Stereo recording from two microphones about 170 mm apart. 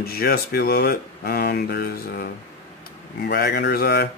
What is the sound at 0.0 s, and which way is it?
Speech, 65° left (ahead or behind).